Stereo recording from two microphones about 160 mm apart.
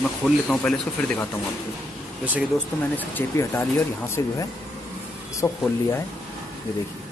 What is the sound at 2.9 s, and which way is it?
Speech, 15° left (ahead or behind).